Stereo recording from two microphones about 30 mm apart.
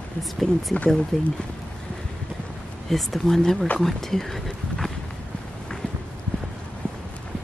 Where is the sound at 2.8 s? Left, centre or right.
Centre.